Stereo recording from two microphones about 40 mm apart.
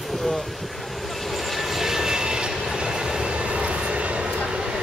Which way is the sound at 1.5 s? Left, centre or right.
Centre.